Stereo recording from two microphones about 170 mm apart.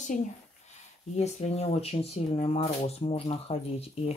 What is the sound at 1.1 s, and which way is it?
Speech, 40° left (ahead or behind).